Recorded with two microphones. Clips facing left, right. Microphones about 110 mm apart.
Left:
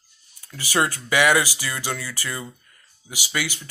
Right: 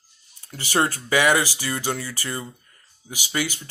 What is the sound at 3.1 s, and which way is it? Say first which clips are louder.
Speech: right 1 dB; 40° right (ahead or behind).